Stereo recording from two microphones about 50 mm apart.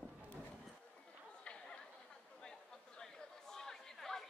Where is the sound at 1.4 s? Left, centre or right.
Centre.